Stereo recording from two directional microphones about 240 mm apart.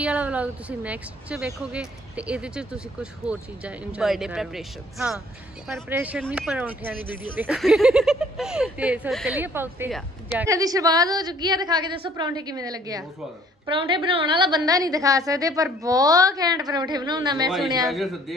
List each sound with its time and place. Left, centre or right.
0.0 s a woman's voice: centre
17.5 s a woman's voice: centre